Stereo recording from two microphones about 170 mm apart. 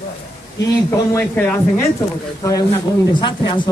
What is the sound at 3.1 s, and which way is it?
Speech, 30° left (ahead or behind).